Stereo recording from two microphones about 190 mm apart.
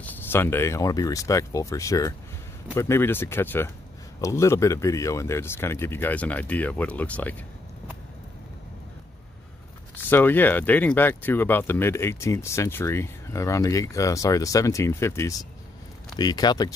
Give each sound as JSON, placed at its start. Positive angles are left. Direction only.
{"t": 0.0, "sound": "speech", "side_deg": 10}
{"t": 9.9, "sound": "speech", "side_deg": 10}